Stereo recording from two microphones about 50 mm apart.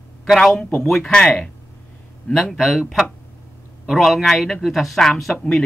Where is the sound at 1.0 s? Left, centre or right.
Centre.